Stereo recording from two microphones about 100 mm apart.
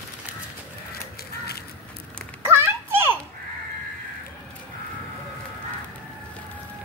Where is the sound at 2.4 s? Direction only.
25° right (ahead or behind).